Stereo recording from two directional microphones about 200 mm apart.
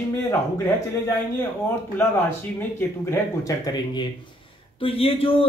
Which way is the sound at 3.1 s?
15° left (ahead or behind).